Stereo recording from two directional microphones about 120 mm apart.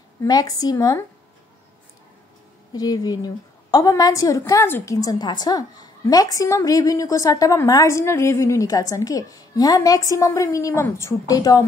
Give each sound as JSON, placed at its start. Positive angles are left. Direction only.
{"t": 0.2, "sound": "a woman's voice", "side_deg": 30}
{"t": 2.7, "sound": "a woman's voice", "side_deg": 30}
{"t": 4.9, "sound": "a woman's voice", "side_deg": 35}